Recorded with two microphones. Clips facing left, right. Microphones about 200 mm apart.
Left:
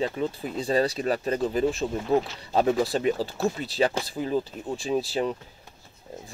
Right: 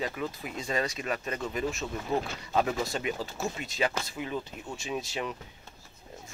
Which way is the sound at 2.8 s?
35° left (ahead or behind).